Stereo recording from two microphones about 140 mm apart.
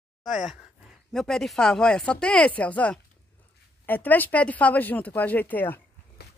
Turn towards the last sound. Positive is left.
turn(degrees=15)  # may be behind; listen again after turning